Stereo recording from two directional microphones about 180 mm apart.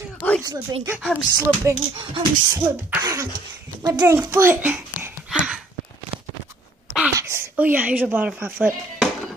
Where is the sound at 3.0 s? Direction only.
20° right (ahead or behind).